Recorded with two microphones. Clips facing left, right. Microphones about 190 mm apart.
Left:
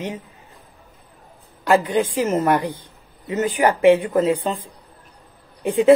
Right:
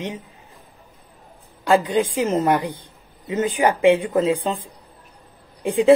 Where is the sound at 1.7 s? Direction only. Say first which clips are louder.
Even; 15° right (ahead or behind).